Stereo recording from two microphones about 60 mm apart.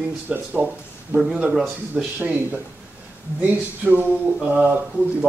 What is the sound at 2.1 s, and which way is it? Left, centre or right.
Speech, right.